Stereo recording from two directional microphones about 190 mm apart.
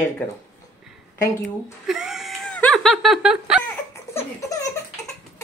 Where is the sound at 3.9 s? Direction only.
15° left (ahead or behind).